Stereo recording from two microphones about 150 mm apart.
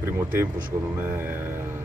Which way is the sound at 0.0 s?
15° right (ahead or behind).